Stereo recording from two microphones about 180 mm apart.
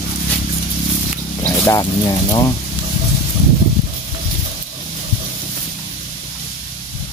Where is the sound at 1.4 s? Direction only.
15° left (ahead or behind).